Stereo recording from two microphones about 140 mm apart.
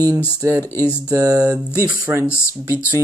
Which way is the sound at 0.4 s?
25° right (ahead or behind).